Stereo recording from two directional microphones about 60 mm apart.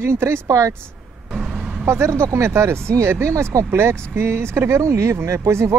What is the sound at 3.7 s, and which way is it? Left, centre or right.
Speech, right.